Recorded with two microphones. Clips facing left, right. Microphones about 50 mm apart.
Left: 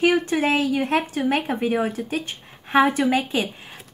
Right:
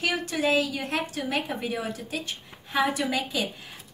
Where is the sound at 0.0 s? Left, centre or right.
Left.